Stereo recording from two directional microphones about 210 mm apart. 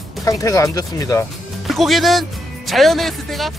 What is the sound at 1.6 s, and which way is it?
Speech, centre (ahead or behind).